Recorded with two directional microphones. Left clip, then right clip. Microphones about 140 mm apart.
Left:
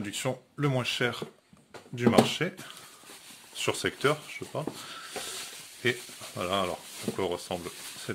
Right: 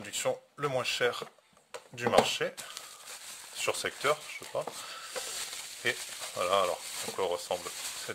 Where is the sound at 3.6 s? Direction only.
30° right (ahead or behind).